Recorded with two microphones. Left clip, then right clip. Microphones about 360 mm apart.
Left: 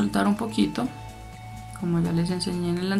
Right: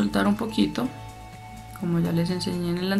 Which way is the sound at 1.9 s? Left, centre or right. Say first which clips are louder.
Right 1 dB; centre.